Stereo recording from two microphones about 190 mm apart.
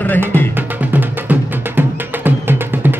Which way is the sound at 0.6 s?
10° right (ahead or behind).